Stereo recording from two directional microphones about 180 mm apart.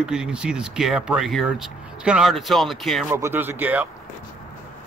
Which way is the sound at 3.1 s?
10° right (ahead or behind).